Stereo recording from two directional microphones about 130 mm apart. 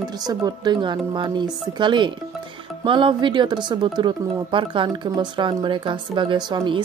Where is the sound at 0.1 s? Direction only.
30° right (ahead or behind).